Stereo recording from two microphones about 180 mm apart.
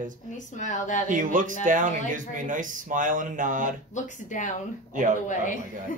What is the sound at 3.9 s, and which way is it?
Speech, 45° left (ahead or behind).